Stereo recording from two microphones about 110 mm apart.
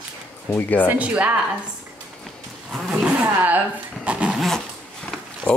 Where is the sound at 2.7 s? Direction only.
5° right (ahead or behind).